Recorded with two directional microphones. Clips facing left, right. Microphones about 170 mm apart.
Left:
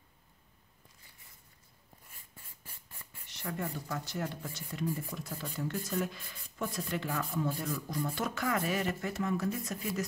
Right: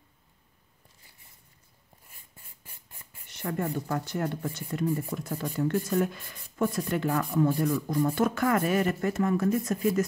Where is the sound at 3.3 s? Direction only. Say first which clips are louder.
Right 7 dB; 50° right (ahead or behind).